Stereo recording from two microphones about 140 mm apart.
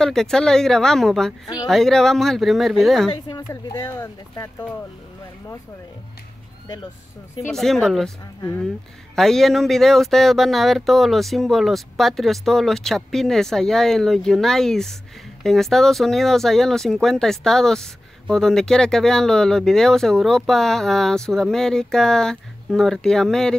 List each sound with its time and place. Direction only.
0.0 s speech: 5° left (ahead or behind)
3.3 s speech: 30° left (ahead or behind)
7.5 s speech: centre (ahead or behind)